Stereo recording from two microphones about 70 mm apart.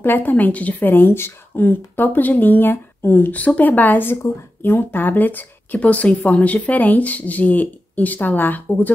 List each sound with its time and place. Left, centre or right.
0.0 s speech: left